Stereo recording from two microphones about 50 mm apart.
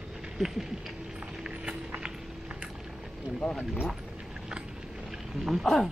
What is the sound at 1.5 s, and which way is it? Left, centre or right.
Run, right.